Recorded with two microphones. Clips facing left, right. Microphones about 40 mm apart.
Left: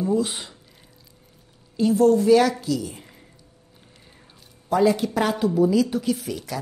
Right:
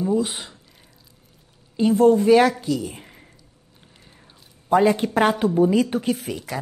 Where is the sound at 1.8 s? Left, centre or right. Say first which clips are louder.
Right 2 dB; right.